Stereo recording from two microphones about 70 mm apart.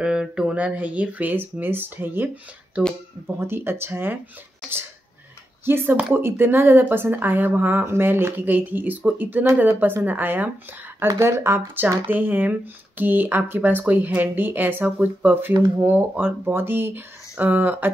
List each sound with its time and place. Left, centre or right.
0.0 s speech: centre; by 4.2 s right
5.7 s speech: right
11.1 s speech: right